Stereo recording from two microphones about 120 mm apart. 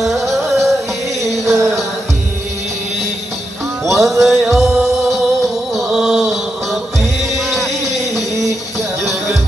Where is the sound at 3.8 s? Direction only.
Centre (ahead or behind).